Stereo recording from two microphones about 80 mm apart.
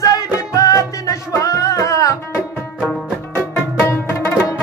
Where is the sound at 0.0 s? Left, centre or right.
Left.